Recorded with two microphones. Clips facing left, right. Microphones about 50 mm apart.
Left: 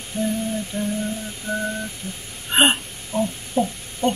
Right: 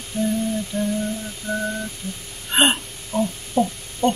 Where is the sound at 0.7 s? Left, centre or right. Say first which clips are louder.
Right 3 dB; left.